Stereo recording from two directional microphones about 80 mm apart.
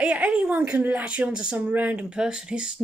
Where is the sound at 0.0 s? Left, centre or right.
Centre.